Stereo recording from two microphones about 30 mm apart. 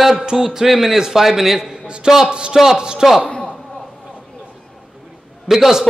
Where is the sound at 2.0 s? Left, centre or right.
Centre.